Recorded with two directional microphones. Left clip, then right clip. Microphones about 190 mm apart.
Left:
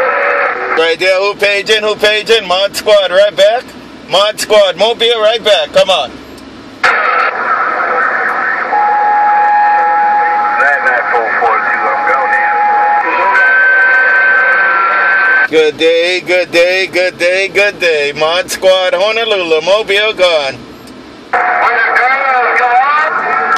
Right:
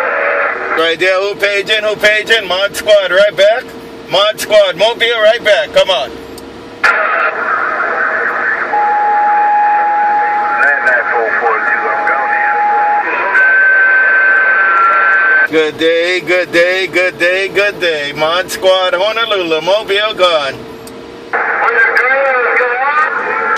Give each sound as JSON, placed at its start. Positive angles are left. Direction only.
{"t": 0.0, "sound": "radio", "side_deg": 40}
{"t": 0.7, "sound": "speech", "side_deg": 30}
{"t": 6.8, "sound": "a sound", "side_deg": 40}
{"t": 15.5, "sound": "speech", "side_deg": 25}
{"t": 21.3, "sound": "radio", "side_deg": 40}